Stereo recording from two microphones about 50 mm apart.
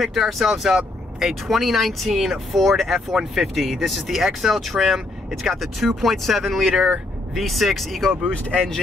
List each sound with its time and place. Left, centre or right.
0.0 s speech: centre
6.7 s speech: centre
7.3 s speech: centre